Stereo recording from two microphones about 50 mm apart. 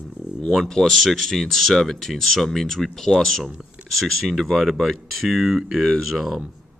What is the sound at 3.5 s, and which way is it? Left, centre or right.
Speech, centre.